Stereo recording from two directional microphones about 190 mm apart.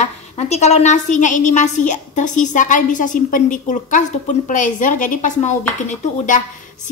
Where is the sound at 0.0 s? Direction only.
35° left (ahead or behind).